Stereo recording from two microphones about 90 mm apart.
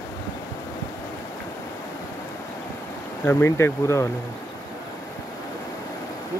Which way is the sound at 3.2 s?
30° left (ahead or behind).